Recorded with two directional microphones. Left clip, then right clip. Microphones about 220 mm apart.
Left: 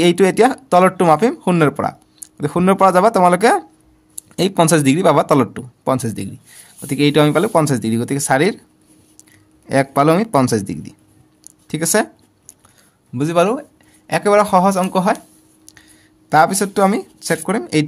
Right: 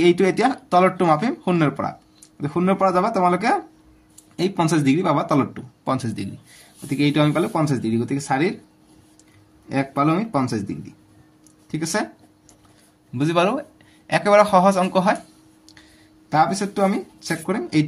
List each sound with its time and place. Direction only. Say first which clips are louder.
0.0 s speech: left 5 dB; 35° left (ahead or behind)
9.7 s speech: left 7 dB; 40° left (ahead or behind)
11.6 s a sound: left 7 dB; 40° left (ahead or behind)
13.1 s speech: left 4 dB; 30° left (ahead or behind)
16.3 s speech: left 6 dB; 40° left (ahead or behind)